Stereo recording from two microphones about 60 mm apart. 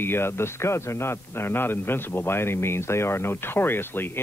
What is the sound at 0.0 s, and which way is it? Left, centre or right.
A man's voice, left.